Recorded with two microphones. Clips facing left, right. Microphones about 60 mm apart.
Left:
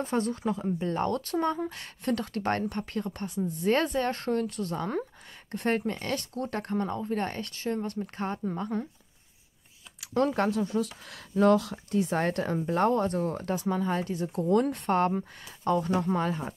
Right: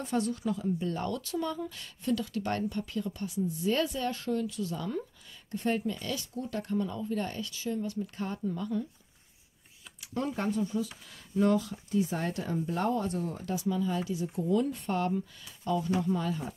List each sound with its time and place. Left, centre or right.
0.0 s speech: left
9.9 s speech: left